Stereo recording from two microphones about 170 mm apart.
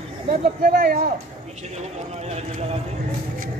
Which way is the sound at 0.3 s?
60° right (ahead or behind).